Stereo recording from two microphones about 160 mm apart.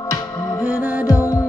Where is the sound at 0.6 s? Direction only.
10° right (ahead or behind).